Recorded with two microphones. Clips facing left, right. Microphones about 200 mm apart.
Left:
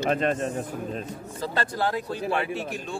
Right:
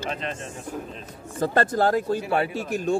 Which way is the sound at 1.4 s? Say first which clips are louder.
Right 6 dB; 50° right (ahead or behind).